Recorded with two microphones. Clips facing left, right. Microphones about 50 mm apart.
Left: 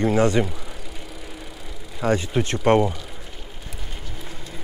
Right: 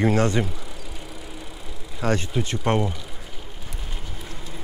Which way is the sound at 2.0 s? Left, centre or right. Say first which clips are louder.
Left 2 dB; centre.